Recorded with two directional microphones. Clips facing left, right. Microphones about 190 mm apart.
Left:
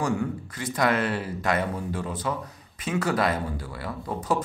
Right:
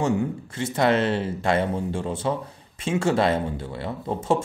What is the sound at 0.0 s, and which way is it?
Speech, 25° right (ahead or behind).